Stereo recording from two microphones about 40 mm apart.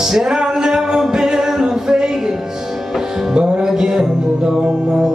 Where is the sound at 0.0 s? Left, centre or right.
Centre.